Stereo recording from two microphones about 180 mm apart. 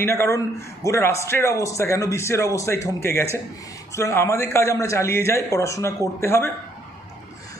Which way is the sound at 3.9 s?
15° left (ahead or behind).